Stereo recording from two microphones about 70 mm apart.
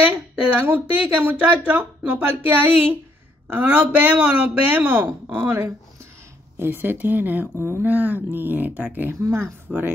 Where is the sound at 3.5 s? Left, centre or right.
Right.